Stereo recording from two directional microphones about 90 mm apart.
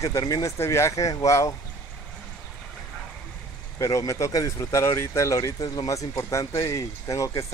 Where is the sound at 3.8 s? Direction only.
35° left (ahead or behind).